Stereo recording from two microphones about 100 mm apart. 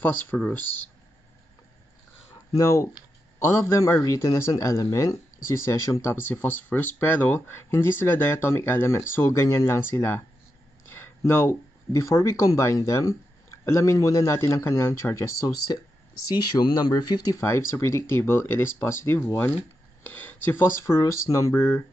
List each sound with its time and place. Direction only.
0.4 s speech: 15° left (ahead or behind)
2.5 s a man's voice: 30° left (ahead or behind)
6.2 s a man's voice: 20° left (ahead or behind); by 17.4 s 40° left (ahead or behind)
17.4 s speech: 25° left (ahead or behind)